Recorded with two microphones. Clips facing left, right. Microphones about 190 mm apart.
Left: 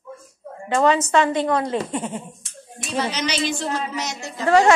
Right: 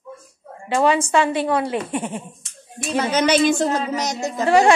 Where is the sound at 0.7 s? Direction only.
10° right (ahead or behind).